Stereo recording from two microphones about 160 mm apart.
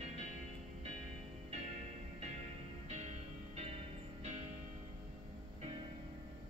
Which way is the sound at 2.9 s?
40° right (ahead or behind).